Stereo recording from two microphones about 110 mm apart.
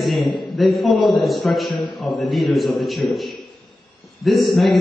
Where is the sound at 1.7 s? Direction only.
45° left (ahead or behind).